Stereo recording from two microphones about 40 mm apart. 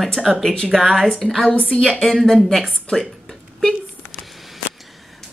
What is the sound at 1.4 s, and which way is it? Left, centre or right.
Speech, left.